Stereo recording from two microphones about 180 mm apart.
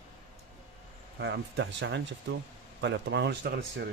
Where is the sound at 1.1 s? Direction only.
90° right.